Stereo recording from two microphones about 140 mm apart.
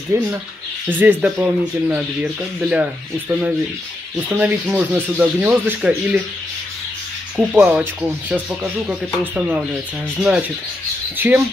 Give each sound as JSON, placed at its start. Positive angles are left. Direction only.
{"t": 0.1, "sound": "speech", "side_deg": -20}
{"t": 7.3, "sound": "speech", "side_deg": -10}
{"t": 11.1, "sound": "speech", "side_deg": -15}